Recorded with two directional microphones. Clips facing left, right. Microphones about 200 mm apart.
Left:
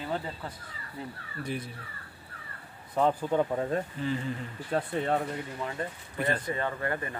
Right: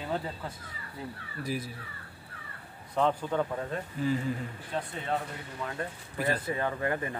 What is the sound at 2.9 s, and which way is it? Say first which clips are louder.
Speech: left 2 dB; 5° left (ahead or behind).